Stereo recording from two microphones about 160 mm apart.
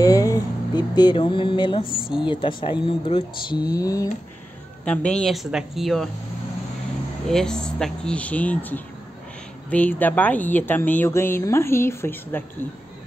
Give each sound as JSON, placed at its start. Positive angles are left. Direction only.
{"t": 0.0, "sound": "a sound", "side_deg": 20}
{"t": 2.2, "sound": "speech", "side_deg": 30}
{"t": 4.8, "sound": "speech", "side_deg": 5}
{"t": 7.2, "sound": "a woman's voice", "side_deg": 5}